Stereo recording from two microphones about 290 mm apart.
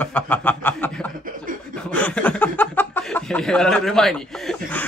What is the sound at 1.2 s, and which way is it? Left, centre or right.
Chuckle, right.